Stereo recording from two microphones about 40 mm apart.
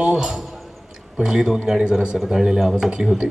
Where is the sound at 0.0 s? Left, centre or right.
Centre.